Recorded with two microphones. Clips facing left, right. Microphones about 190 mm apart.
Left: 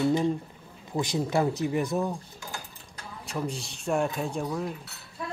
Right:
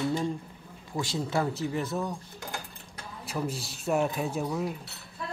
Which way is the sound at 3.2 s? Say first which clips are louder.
Even; centre (ahead or behind).